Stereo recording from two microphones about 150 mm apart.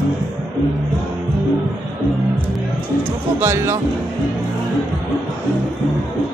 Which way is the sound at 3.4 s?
15° right (ahead or behind).